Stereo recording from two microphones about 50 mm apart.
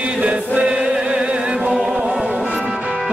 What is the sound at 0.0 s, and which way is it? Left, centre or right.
Music, right.